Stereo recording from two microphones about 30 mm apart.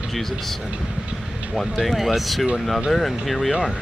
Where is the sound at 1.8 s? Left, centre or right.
Centre.